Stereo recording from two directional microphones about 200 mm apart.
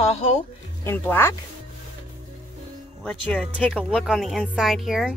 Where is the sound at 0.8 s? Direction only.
10° left (ahead or behind).